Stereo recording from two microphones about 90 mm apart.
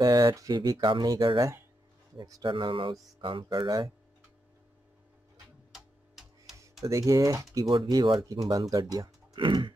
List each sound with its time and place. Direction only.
0.0 s speech: 45° right (ahead or behind)
0.7 s speech: 65° right (ahead or behind)
1.0 s speech: 50° right (ahead or behind)
2.4 s speech: 65° right (ahead or behind)
5.7 s tick-tock: centre (ahead or behind)
6.6 s speech: 35° right (ahead or behind)
7.7 s speech: 55° right (ahead or behind)
8.3 s speech: 45° right (ahead or behind)
8.9 s music: 45° right (ahead or behind)
9.4 s speech: 65° right (ahead or behind)